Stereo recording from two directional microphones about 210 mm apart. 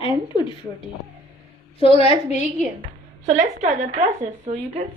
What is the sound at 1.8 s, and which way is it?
Speech, 25° left (ahead or behind).